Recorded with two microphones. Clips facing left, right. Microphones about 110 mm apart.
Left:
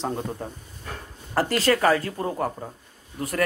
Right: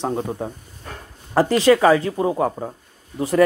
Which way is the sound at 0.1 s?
15° right (ahead or behind).